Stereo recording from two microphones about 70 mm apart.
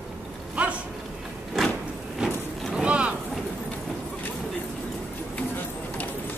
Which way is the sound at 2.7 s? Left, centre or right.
Centre.